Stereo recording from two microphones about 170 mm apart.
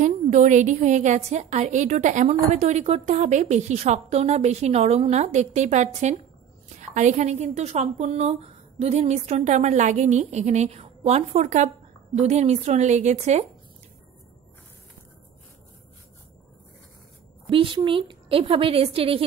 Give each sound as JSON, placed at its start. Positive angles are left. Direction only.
{"t": 0.0, "sound": "a woman's voice", "side_deg": -45}
{"t": 17.5, "sound": "a woman's voice", "side_deg": -30}